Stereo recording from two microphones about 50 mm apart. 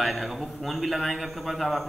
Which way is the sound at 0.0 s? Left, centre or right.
Centre.